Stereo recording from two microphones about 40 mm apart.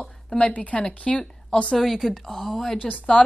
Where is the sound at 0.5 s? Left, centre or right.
Left.